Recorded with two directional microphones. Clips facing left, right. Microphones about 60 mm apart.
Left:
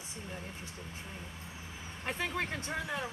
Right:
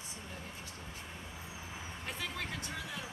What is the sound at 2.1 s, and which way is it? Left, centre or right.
Speech, left.